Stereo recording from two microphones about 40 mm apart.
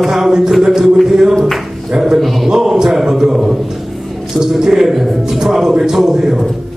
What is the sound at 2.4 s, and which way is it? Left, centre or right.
Speech, centre.